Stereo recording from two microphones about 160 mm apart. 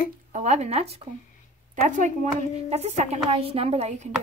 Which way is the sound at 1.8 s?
50° right (ahead or behind).